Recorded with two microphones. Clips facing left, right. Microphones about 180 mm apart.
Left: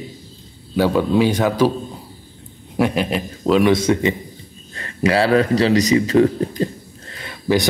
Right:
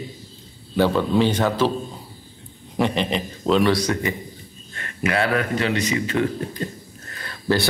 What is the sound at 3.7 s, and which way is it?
A man's voice, 25° left (ahead or behind).